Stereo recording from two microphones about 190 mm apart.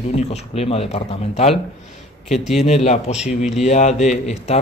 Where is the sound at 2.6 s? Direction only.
35° left (ahead or behind).